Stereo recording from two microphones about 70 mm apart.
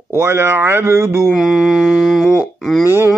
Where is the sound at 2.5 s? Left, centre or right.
Centre.